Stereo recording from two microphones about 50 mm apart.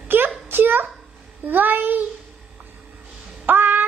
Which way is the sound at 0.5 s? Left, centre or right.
Right.